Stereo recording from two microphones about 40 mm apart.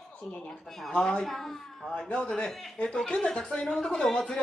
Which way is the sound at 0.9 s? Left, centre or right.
Left.